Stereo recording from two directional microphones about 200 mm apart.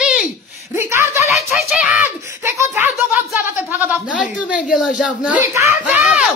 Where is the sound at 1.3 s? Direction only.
Centre (ahead or behind).